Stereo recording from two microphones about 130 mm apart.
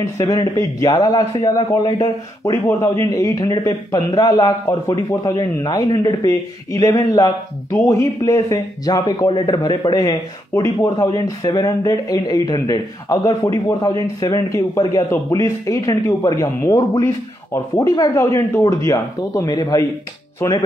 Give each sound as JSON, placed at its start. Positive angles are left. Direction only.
{"t": 0.0, "sound": "a man's voice", "side_deg": 30}